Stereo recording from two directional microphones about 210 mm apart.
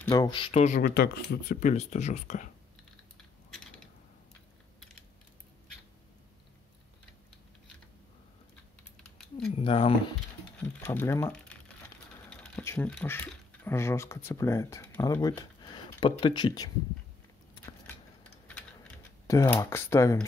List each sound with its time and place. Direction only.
0.0 s speech: 15° left (ahead or behind); by 0.8 s 30° left (ahead or behind)
0.8 s speech: 45° left (ahead or behind)
9.5 s speech: 25° left (ahead or behind)
10.6 s speech: 10° left (ahead or behind)
19.2 s speech: 15° left (ahead or behind)